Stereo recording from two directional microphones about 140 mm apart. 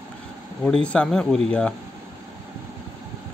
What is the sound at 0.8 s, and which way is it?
Speech, 5° left (ahead or behind).